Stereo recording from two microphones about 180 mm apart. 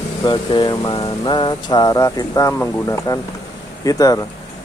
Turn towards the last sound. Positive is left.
turn(degrees=20)  # may be behind; listen again after turning